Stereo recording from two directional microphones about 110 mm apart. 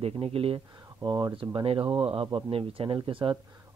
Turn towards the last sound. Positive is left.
turn(degrees=-55)  # may be behind; listen again after turning